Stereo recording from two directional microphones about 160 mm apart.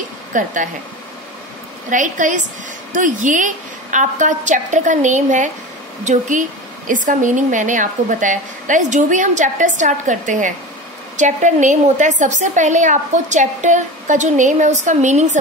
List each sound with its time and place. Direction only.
0.3 s speech: 55° right (ahead or behind)
1.9 s a woman's voice: 55° right (ahead or behind)